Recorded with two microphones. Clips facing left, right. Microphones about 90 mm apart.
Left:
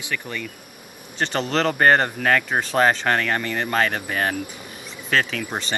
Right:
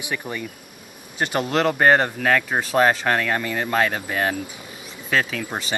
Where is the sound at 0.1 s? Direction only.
20° right (ahead or behind).